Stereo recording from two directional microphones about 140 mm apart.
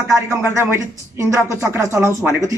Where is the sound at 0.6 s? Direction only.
20° right (ahead or behind).